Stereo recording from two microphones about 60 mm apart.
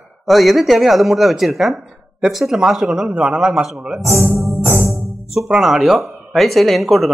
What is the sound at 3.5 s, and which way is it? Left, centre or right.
Speech, centre.